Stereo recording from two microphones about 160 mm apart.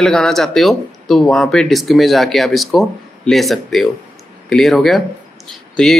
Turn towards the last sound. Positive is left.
turn(degrees=0)  # may be behind; listen again after turning